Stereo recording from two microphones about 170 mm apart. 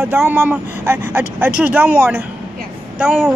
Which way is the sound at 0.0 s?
10° right (ahead or behind).